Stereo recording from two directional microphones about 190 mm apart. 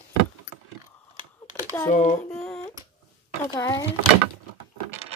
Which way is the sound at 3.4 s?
20° left (ahead or behind).